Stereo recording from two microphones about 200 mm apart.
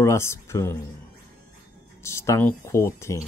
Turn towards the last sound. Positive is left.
turn(degrees=15)  # may be behind; listen again after turning